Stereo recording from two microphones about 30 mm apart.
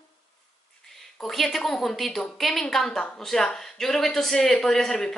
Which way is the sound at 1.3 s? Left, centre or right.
Centre.